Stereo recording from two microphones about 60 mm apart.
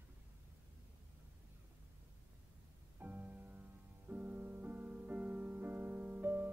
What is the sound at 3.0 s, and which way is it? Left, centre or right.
Music, right.